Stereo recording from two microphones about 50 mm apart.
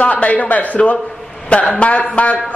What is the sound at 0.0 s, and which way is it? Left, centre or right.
Speech, left.